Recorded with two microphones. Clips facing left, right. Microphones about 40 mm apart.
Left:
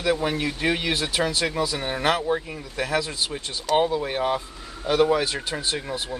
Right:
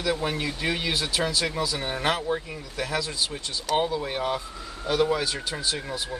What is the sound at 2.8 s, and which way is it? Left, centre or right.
Speech, left.